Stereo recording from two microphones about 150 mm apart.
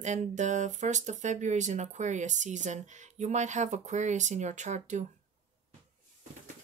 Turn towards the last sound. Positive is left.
turn(degrees=-50)  # may be behind; listen again after turning